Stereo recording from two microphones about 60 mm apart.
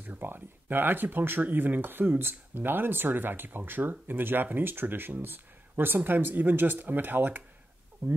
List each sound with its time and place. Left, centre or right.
0.0 s speech: right